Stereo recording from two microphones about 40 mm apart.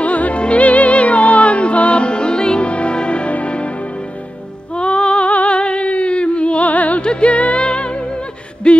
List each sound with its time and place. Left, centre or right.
0.0 s music: left
4.7 s female singing: left
7.0 s music: left
8.6 s a sound: left